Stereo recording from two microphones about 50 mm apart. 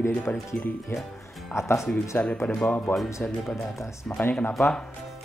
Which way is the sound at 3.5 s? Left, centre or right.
Left.